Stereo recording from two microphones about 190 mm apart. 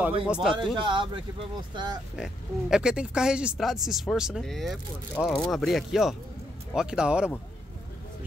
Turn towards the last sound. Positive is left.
turn(degrees=-5)  # may be behind; listen again after turning